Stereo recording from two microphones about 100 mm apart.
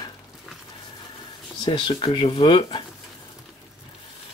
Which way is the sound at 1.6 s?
55° left (ahead or behind).